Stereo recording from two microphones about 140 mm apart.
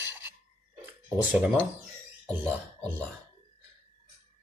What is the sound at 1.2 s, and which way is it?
Speech, 10° right (ahead or behind).